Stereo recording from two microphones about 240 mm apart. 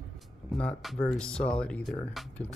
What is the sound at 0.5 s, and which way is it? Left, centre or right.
Speech, centre.